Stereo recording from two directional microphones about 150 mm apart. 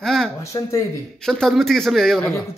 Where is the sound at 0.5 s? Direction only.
25° left (ahead or behind).